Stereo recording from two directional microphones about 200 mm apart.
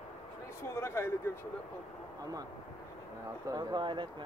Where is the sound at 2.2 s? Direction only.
20° right (ahead or behind).